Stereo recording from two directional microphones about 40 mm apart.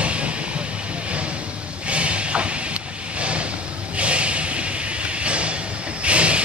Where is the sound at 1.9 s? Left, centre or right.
Right.